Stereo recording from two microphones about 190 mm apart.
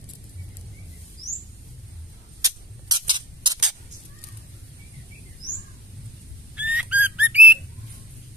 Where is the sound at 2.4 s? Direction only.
20° right (ahead or behind).